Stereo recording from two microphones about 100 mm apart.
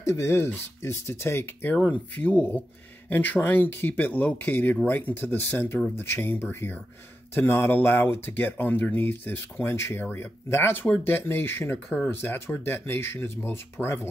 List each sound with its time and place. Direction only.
0.0 s speech: 25° left (ahead or behind)